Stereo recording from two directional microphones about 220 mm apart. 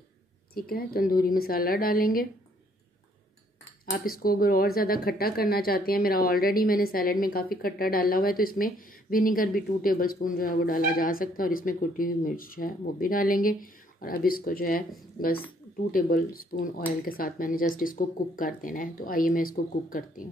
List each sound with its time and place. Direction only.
0.6 s speech: 45° left (ahead or behind)
3.9 s speech: 40° left (ahead or behind)